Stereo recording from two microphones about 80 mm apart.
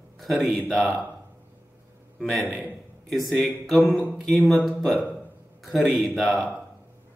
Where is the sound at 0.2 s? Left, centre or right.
Centre.